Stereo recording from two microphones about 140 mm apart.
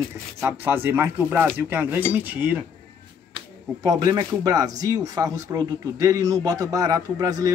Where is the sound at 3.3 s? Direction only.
25° right (ahead or behind).